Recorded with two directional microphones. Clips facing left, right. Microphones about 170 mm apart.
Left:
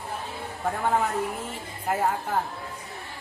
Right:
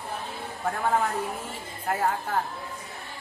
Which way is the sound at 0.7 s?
5° left (ahead or behind).